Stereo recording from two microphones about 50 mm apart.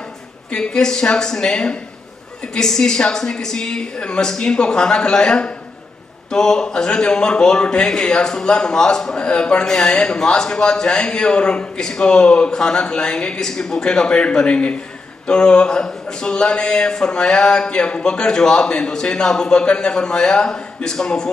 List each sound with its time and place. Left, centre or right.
0.5 s a man's voice: centre